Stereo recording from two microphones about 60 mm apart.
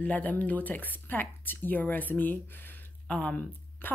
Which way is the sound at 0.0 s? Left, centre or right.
Left.